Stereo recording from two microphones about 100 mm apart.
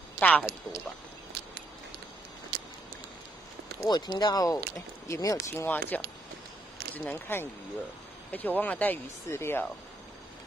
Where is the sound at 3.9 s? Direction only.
45° left (ahead or behind).